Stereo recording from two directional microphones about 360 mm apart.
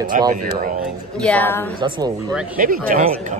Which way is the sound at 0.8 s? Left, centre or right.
Centre.